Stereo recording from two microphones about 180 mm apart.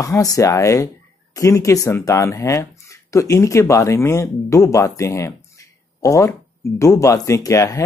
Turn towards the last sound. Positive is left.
turn(degrees=15)  # may be behind; listen again after turning